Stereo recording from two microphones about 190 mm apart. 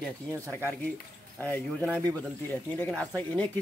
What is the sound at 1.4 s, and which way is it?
Speech, 10° left (ahead or behind).